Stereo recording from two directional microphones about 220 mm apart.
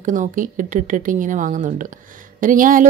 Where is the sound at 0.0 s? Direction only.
35° right (ahead or behind).